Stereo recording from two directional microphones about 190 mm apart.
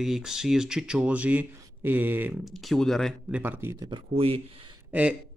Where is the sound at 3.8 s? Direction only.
30° right (ahead or behind).